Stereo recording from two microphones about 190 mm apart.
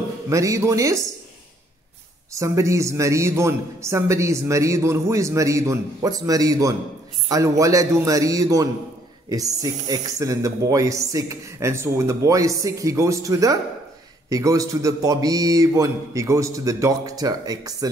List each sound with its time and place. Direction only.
0.3 s a man's voice: 15° right (ahead or behind)
2.3 s a man's voice: 15° right (ahead or behind)